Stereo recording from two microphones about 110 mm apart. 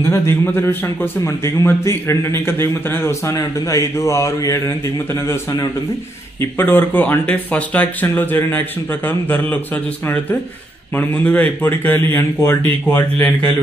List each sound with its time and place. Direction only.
0.1 s a man's voice: 25° left (ahead or behind)
11.0 s speech: 15° left (ahead or behind)